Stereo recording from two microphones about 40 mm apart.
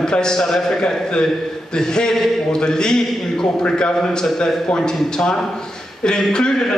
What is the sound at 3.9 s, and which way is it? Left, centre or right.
A man's voice, centre.